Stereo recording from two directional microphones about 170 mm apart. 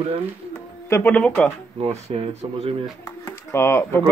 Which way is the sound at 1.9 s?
35° right (ahead or behind).